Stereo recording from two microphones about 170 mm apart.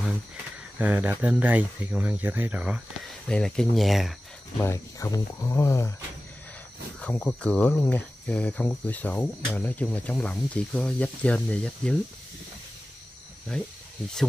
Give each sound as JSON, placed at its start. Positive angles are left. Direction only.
{"t": 0.7, "sound": "speech", "side_deg": -10}
{"t": 3.3, "sound": "speech", "side_deg": 5}
{"t": 4.6, "sound": "speech", "side_deg": 15}
{"t": 7.0, "sound": "speech", "side_deg": 5}
{"t": 13.5, "sound": "speech", "side_deg": 5}